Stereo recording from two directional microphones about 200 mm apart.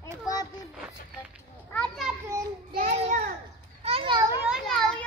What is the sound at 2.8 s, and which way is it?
Child singing, 40° right (ahead or behind).